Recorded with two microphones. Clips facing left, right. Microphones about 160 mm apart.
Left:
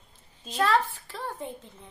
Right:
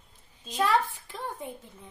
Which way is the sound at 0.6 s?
15° right (ahead or behind).